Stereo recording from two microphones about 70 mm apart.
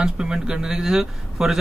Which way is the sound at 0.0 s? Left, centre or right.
Centre.